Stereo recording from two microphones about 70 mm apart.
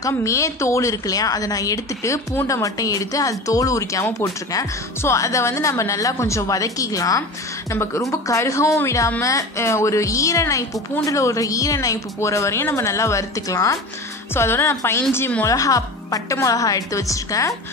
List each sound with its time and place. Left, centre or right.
0.0 s a woman's voice: left
7.7 s a woman's voice: left
14.3 s a woman's voice: left
15.4 s a woman's voice: left